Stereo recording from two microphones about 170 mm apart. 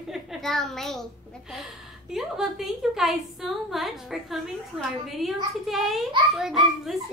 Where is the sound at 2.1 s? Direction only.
Centre (ahead or behind).